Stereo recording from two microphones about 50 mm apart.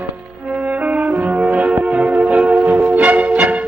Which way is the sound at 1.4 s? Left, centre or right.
Right.